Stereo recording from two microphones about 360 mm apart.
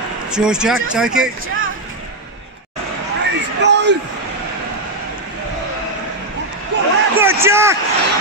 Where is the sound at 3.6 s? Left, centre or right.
Right.